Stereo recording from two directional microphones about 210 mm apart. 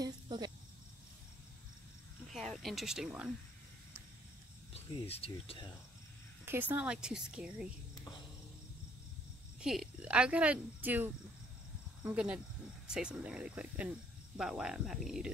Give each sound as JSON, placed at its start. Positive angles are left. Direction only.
{"t": 0.0, "sound": "cricket", "side_deg": -20}
{"t": 2.3, "sound": "speech", "side_deg": 0}
{"t": 4.7, "sound": "speech", "side_deg": 30}
{"t": 6.4, "sound": "speech", "side_deg": -10}
{"t": 9.6, "sound": "speech", "side_deg": -5}